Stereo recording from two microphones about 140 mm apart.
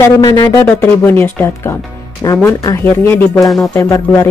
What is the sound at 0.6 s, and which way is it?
Speech, 15° left (ahead or behind).